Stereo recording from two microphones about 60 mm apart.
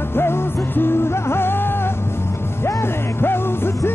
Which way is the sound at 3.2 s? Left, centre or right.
Left.